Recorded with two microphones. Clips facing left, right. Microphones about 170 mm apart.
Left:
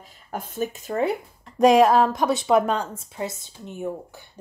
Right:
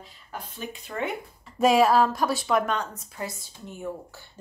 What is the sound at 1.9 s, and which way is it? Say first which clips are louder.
A woman's voice: left 3 dB; 20° left (ahead or behind).